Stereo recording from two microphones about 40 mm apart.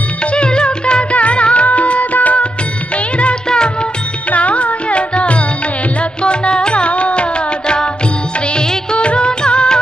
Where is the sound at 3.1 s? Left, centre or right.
Left.